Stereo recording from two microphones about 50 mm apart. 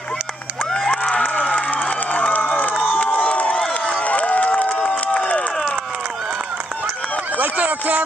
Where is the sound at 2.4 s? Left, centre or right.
Left.